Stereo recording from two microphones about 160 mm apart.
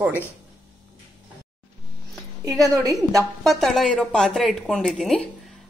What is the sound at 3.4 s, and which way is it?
A woman's voice, centre (ahead or behind).